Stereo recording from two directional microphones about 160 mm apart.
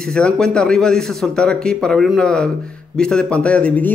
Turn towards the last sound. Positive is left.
turn(degrees=10)  # may be behind; listen again after turning